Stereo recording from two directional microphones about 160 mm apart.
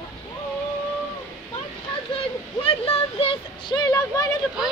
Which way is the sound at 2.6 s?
35° left (ahead or behind).